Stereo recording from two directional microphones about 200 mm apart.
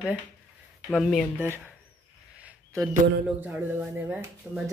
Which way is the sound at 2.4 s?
5° right (ahead or behind).